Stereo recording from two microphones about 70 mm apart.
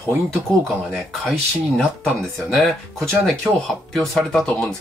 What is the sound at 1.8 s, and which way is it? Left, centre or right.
Speech, centre.